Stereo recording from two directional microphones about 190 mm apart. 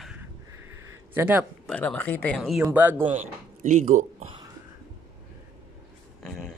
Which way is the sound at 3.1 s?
40° right (ahead or behind).